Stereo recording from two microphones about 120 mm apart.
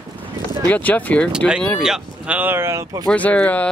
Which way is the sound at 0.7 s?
15° left (ahead or behind).